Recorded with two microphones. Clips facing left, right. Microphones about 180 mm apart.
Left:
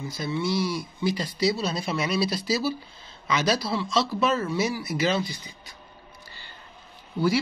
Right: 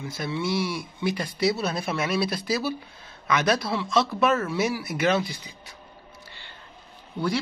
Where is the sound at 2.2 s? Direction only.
55° right (ahead or behind).